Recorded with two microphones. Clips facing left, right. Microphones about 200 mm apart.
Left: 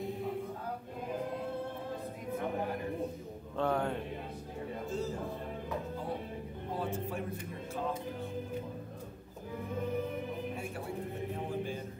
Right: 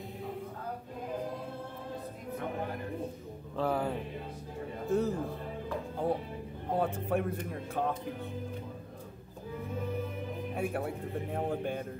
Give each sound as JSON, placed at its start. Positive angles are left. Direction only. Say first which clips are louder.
{"t": 3.5, "sound": "music", "louder": "right 1 dB", "side_deg": -5}
{"t": 4.8, "sound": "a sound", "louder": "right 8 dB", "side_deg": -60}
{"t": 6.7, "sound": "music", "louder": "right 6 dB", "side_deg": -60}
{"t": 10.5, "sound": "music", "louder": "right 5 dB", "side_deg": -60}